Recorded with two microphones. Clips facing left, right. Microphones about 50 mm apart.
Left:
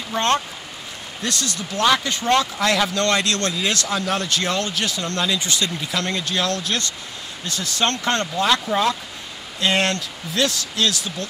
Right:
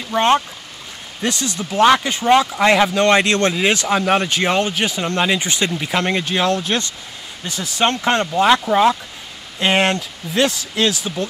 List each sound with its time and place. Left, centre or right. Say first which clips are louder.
0.1 s speech: right 5 dB; centre